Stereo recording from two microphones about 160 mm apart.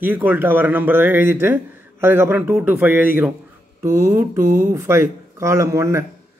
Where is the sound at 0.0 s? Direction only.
10° right (ahead or behind).